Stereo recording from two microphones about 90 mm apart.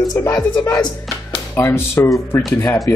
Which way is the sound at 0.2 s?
25° left (ahead or behind).